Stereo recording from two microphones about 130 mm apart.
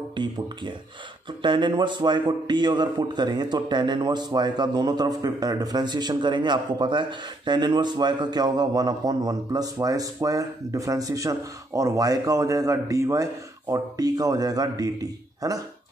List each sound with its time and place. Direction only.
0.1 s a man's voice: 35° right (ahead or behind)